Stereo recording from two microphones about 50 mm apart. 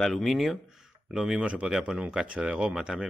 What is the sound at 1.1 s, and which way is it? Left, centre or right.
Speech, centre.